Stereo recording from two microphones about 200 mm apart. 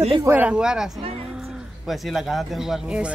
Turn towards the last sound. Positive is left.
turn(degrees=-5)  # may be behind; listen again after turning